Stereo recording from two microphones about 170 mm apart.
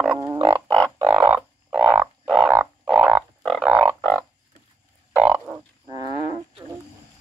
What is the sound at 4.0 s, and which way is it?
Frog, 10° left (ahead or behind).